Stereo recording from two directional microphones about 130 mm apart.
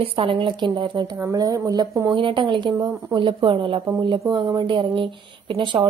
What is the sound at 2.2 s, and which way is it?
A woman's voice, 40° right (ahead or behind).